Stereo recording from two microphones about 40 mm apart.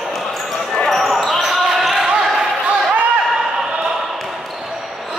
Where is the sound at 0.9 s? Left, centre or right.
Centre.